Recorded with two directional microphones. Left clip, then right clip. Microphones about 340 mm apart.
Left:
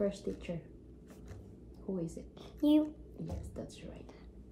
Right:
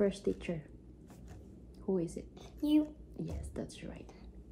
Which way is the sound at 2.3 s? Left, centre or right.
Centre.